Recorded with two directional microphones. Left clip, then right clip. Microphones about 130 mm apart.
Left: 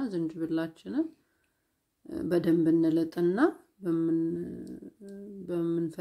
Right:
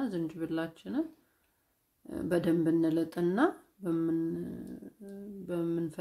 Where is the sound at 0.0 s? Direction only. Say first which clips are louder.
Left 3 dB; 20° left (ahead or behind).